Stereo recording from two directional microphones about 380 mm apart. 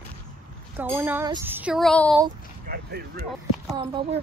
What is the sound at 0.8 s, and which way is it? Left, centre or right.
Speech, centre.